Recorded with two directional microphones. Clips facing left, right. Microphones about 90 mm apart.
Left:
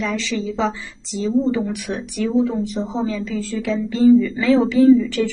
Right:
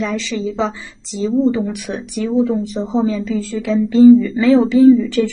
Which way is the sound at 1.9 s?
15° right (ahead or behind).